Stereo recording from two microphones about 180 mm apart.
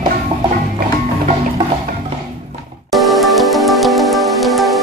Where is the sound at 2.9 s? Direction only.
Centre (ahead or behind).